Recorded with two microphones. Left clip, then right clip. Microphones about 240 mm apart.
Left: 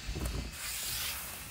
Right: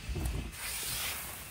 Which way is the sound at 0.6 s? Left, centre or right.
Right.